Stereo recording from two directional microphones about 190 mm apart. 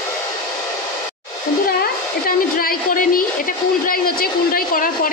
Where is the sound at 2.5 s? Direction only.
50° left (ahead or behind).